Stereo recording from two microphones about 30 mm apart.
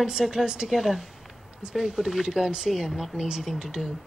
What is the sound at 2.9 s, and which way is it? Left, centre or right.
Speech, centre.